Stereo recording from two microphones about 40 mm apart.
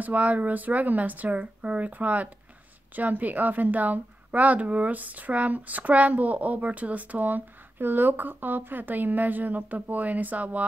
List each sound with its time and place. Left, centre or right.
0.0 s a woman's voice: right